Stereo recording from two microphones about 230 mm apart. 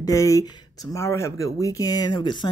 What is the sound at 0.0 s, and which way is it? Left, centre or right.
Speech, centre.